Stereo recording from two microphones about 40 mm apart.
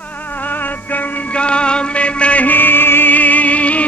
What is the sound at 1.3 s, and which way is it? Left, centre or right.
Music, left.